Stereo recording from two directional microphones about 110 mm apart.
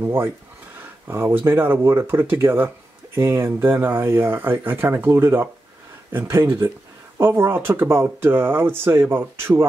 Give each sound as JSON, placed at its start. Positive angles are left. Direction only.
{"t": 0.0, "sound": "speech", "side_deg": -20}